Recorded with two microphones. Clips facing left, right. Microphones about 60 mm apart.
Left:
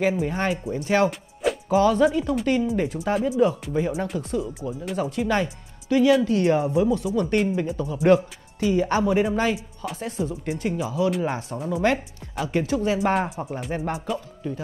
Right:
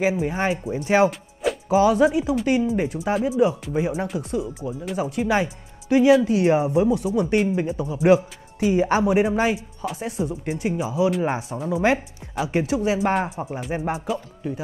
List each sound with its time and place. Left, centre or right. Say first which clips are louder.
0.0 s speech: right 1 dB; centre
1.4 s music: right 1 dB; centre
1.8 s speech: right 2 dB; centre